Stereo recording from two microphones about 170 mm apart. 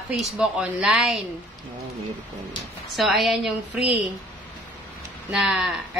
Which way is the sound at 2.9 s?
Centre (ahead or behind).